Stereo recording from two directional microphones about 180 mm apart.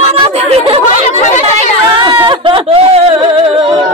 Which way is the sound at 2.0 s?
25° right (ahead or behind).